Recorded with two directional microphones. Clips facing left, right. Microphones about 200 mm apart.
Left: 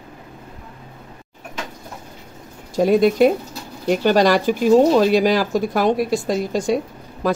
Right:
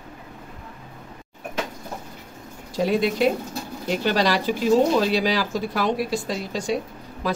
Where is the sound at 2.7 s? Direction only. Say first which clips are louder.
Left 7 dB; 50° left (ahead or behind).